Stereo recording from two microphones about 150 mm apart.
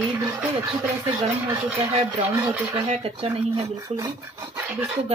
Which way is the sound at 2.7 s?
40° right (ahead or behind).